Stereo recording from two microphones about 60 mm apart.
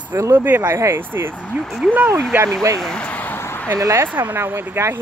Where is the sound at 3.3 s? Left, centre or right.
Left.